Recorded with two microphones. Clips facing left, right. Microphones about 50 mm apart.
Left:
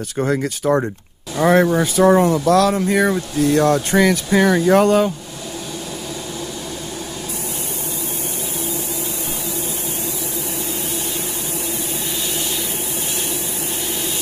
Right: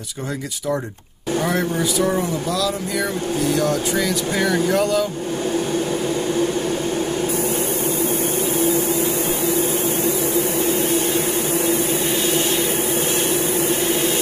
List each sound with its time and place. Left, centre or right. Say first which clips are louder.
1.4 s speech: left 9 dB; left